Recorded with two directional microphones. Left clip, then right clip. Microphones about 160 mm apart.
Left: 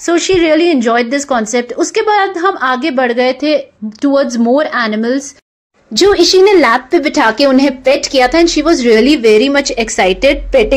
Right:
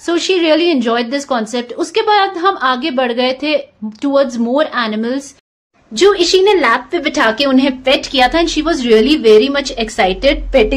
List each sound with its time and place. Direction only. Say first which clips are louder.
0.0 s a woman's voice: left 3 dB; 20° left (ahead or behind)
5.9 s a woman's voice: left 3 dB; 40° left (ahead or behind)
7.0 s a woman's voice: left 3 dB; 25° left (ahead or behind)